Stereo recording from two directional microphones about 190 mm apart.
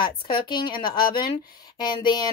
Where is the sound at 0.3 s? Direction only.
25° left (ahead or behind).